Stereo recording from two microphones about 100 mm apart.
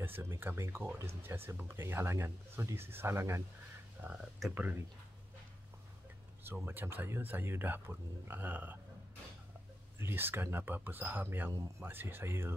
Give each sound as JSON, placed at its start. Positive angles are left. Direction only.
{"t": 0.0, "sound": "speech", "side_deg": -25}
{"t": 4.0, "sound": "speech", "side_deg": -10}
{"t": 6.4, "sound": "speech", "side_deg": -20}
{"t": 9.9, "sound": "speech", "side_deg": -20}